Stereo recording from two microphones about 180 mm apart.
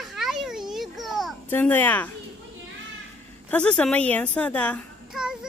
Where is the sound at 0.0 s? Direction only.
Centre (ahead or behind).